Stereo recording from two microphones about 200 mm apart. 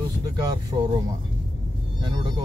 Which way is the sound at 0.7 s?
25° right (ahead or behind).